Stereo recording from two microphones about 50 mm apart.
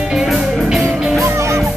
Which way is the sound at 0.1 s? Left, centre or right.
Centre.